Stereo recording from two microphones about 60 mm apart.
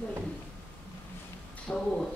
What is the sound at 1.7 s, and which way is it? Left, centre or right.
Speech, left.